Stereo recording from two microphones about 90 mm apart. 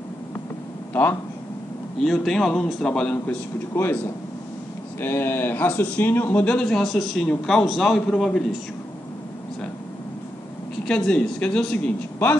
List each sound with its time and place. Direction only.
2.0 s speech: 5° left (ahead or behind)
3.7 s a man's voice: 25° left (ahead or behind)
5.0 s a man's voice: 25° left (ahead or behind); by 8.5 s 5° left (ahead or behind)
10.9 s speech: 10° left (ahead or behind)